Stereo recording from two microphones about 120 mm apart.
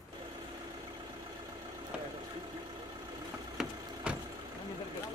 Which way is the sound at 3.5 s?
10° right (ahead or behind).